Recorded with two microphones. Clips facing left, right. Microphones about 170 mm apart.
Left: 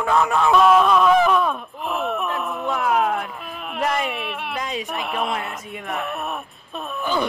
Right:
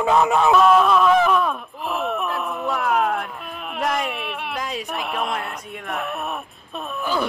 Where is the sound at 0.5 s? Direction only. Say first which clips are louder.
Left 1 dB; centre (ahead or behind).